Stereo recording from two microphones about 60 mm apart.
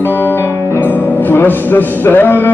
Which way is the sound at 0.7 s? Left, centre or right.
Left.